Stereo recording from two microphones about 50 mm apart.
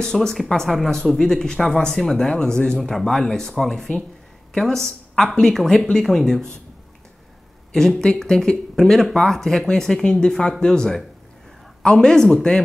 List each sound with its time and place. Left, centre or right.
0.0 s speech: centre
2.8 s speech: centre
8.0 s speech: centre